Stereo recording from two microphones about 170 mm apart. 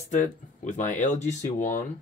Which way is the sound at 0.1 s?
45° left (ahead or behind).